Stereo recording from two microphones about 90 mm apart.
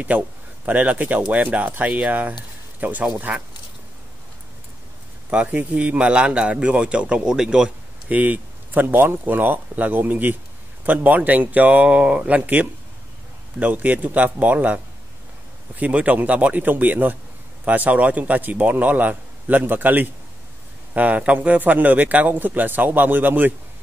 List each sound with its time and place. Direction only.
0.7 s a man's voice: 15° right (ahead or behind)
5.3 s a man's voice: 15° right (ahead or behind)